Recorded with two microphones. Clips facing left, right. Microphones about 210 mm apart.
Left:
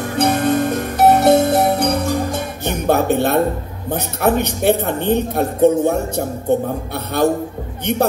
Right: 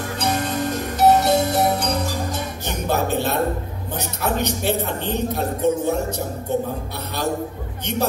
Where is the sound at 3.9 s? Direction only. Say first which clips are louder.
Left 7 dB; 55° left (ahead or behind).